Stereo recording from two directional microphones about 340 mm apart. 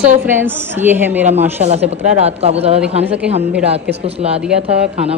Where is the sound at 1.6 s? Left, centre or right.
Centre.